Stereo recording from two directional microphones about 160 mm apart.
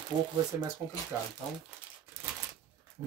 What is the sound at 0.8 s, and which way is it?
Speech, 15° right (ahead or behind).